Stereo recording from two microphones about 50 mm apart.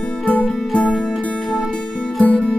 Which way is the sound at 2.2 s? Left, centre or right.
Left.